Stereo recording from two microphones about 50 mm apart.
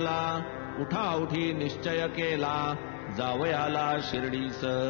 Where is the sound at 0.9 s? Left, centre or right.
Centre.